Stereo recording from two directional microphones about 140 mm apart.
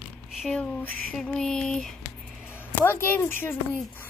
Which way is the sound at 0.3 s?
Centre (ahead or behind).